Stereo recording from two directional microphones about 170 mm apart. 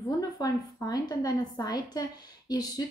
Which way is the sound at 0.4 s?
20° left (ahead or behind).